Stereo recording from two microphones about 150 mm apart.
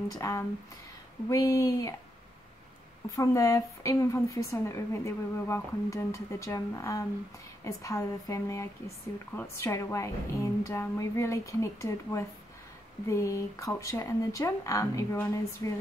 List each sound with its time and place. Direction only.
0.1 s a woman's voice: 20° left (ahead or behind)
3.2 s a woman's voice: 20° left (ahead or behind)